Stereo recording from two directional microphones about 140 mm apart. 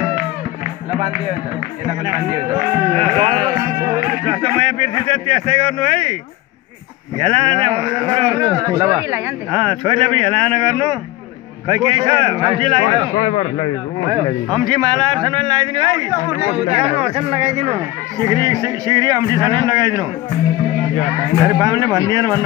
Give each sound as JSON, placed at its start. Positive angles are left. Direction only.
{"t": 2.9, "sound": "speech", "side_deg": -40}
{"t": 7.2, "sound": "speech", "side_deg": -35}
{"t": 8.4, "sound": "speech", "side_deg": -25}
{"t": 13.3, "sound": "speech", "side_deg": 35}
{"t": 14.6, "sound": "speech", "side_deg": -30}
{"t": 16.7, "sound": "speech", "side_deg": -45}
{"t": 18.2, "sound": "speech", "side_deg": -25}
{"t": 21.5, "sound": "speech", "side_deg": -25}